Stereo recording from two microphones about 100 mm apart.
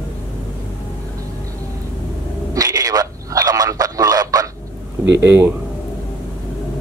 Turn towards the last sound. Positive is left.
turn(degrees=-20)  # may be behind; listen again after turning